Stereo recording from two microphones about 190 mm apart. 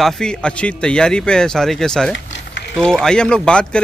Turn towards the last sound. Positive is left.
turn(degrees=5)  # may be behind; listen again after turning